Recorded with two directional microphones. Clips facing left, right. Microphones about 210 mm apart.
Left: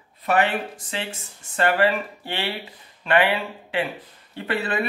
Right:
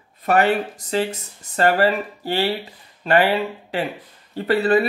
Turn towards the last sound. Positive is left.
turn(degrees=-35)  # may be behind; listen again after turning